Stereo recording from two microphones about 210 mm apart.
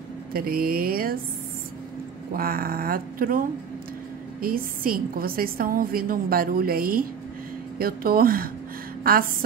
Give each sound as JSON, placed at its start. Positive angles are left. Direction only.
{"t": 0.3, "sound": "a woman's voice", "side_deg": -45}
{"t": 2.3, "sound": "a woman's voice", "side_deg": -45}